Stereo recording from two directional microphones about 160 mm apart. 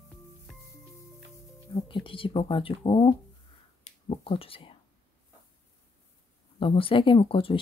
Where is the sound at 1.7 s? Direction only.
30° left (ahead or behind).